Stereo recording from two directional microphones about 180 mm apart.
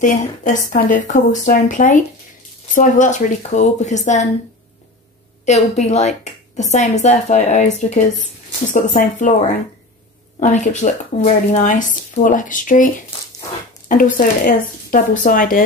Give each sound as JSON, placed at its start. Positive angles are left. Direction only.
{"t": 0.0, "sound": "speech", "side_deg": 45}
{"t": 5.4, "sound": "speech", "side_deg": 40}
{"t": 10.4, "sound": "speech", "side_deg": 45}